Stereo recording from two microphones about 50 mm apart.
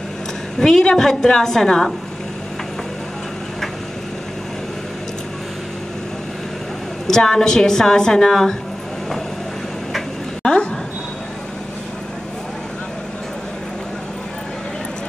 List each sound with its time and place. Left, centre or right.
0.6 s a woman's voice: centre
7.1 s a woman's voice: centre
10.4 s a sound: centre